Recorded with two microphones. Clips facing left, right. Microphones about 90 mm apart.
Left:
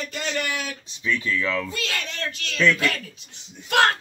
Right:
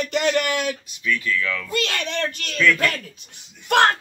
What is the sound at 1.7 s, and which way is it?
Speech, 60° right (ahead or behind).